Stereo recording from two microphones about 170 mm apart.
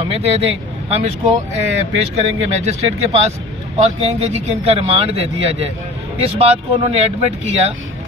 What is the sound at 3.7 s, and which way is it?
Speech, 40° right (ahead or behind).